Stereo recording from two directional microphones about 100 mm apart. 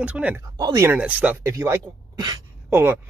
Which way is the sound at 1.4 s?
30° right (ahead or behind).